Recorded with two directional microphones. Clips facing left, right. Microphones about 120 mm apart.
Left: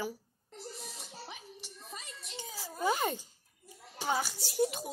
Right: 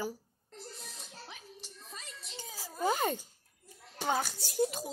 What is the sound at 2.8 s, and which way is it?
Laughter, 45° right (ahead or behind).